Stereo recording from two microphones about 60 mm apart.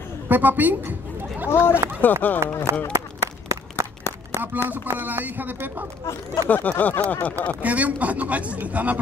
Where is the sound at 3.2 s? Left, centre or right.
Right.